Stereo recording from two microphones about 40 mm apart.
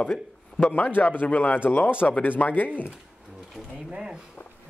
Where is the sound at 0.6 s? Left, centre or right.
Left.